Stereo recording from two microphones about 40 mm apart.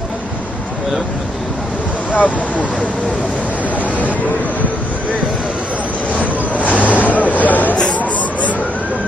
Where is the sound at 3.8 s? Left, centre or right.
Left.